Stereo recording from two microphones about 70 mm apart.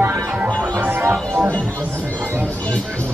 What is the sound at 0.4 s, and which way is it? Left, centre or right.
Music, right.